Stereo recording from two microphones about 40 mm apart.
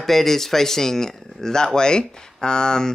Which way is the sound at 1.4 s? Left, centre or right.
Centre.